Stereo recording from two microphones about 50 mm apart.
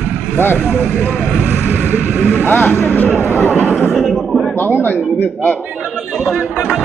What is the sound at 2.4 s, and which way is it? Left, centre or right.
Vehicle, left.